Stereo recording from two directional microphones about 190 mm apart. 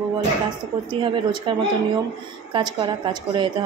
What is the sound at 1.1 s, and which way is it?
A woman's voice, 25° right (ahead or behind).